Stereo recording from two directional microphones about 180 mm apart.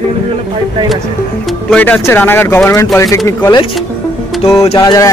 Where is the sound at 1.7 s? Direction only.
10° left (ahead or behind).